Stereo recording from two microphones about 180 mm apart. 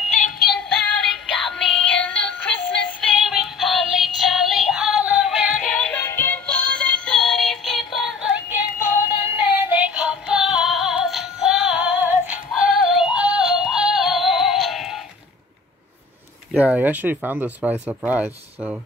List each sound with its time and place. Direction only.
0.5 s music: centre (ahead or behind)
16.5 s speech: 10° right (ahead or behind)